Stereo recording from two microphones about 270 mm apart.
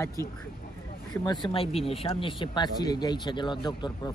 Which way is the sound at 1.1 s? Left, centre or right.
Centre.